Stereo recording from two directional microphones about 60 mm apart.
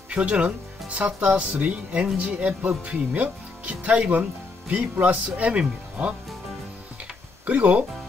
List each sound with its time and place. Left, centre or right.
0.1 s speech: right
7.4 s speech: right